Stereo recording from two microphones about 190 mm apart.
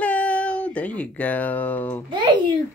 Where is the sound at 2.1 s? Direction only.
25° right (ahead or behind).